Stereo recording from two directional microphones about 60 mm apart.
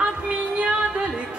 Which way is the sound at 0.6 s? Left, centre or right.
Centre.